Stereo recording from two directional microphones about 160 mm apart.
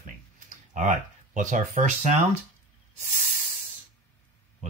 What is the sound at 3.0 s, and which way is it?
Hiss, 50° right (ahead or behind).